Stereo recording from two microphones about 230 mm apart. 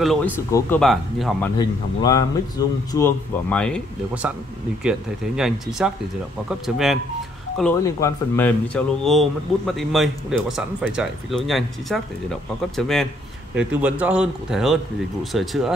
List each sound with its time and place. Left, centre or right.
0.0 s speech: centre
0.5 s speech: centre
0.7 s speech: centre
1.6 s speech: centre
4.8 s speech: centre
7.8 s speech: centre